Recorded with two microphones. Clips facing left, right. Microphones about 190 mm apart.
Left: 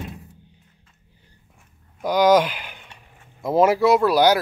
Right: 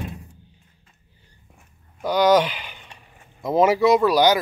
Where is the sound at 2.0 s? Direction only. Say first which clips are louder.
Left 1 dB; 10° left (ahead or behind).